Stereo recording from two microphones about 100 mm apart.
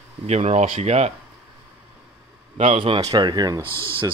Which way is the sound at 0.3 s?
90° right.